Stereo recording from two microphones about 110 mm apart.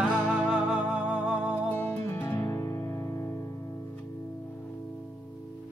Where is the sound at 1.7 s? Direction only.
20° left (ahead or behind).